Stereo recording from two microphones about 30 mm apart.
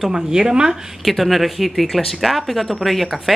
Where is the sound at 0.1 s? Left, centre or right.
Centre.